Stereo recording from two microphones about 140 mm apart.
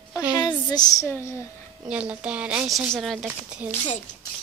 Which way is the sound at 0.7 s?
30° left (ahead or behind).